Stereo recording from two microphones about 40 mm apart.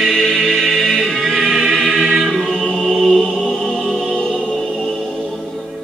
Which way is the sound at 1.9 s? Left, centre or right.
Right.